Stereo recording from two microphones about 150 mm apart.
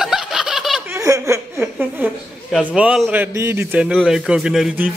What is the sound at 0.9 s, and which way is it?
A woman's voice, 20° right (ahead or behind).